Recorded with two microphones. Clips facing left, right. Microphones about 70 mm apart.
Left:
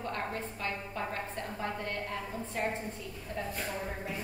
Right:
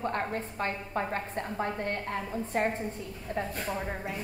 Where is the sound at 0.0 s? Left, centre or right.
Right.